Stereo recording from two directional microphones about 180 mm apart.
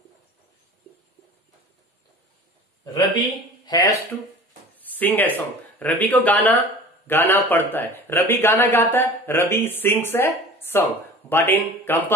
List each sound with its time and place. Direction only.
3.6 s speech: 20° left (ahead or behind)